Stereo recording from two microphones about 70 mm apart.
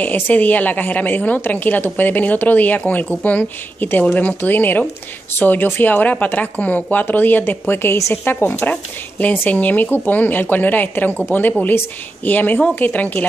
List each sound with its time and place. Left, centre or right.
0.0 s a woman's voice: left